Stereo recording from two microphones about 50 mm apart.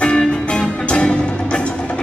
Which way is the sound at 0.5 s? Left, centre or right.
Left.